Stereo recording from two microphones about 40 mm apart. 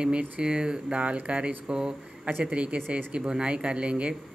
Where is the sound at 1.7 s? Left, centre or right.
Right.